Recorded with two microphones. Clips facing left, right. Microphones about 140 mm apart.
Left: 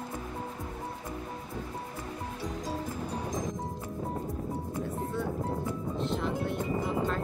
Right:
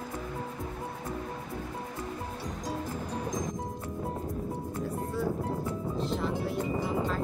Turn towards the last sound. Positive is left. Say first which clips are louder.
# even
turn(degrees=0)  # may be behind; listen again after turning